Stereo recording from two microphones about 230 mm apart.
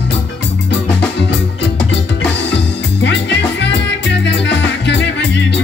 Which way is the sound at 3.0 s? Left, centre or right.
Left.